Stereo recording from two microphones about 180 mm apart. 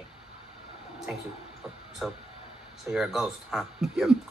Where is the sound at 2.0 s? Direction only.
5° right (ahead or behind).